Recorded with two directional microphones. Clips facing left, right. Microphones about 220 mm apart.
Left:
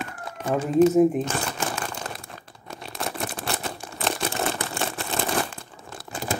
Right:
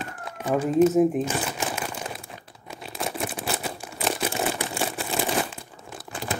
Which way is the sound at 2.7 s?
5° right (ahead or behind).